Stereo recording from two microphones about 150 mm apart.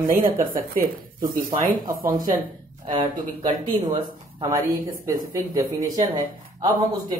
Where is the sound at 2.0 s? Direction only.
25° right (ahead or behind).